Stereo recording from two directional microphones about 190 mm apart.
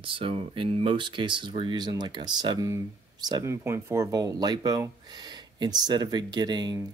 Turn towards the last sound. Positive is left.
turn(degrees=-20)  # may be behind; listen again after turning